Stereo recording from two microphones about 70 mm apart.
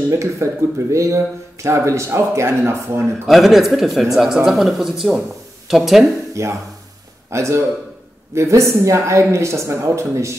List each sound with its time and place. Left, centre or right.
0.1 s speech: right
3.3 s a man's voice: centre
6.4 s speech: right